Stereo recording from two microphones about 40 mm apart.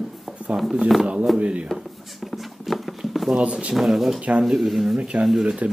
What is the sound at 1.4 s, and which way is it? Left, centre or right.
Speech, right.